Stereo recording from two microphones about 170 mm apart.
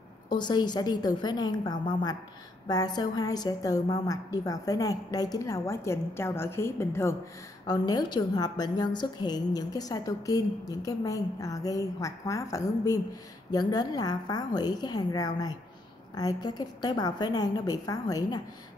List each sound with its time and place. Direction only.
0.3 s a woman's voice: 25° left (ahead or behind)